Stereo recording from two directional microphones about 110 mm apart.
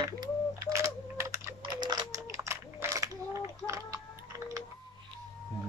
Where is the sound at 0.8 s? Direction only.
25° right (ahead or behind).